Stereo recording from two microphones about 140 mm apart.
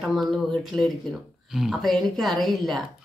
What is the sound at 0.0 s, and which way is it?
Speech, centre (ahead or behind).